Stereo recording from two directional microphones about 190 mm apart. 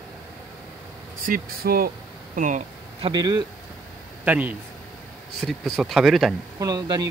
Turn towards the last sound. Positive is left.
turn(degrees=-20)  # may be behind; listen again after turning